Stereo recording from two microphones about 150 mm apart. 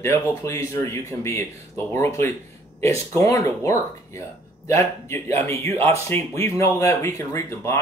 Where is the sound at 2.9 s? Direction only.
20° left (ahead or behind).